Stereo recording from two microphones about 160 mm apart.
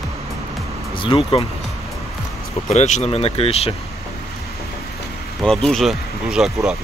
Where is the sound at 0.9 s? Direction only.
35° left (ahead or behind).